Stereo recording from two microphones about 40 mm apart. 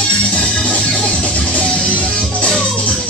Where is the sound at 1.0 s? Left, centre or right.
Left.